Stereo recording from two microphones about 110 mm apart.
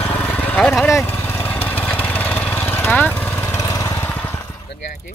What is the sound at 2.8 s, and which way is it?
Lawn mower, 20° left (ahead or behind).